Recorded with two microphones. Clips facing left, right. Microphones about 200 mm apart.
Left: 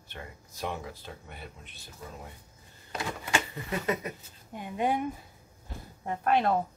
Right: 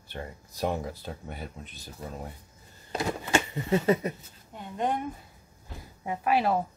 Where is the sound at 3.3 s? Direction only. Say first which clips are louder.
Right 6 dB; 25° right (ahead or behind).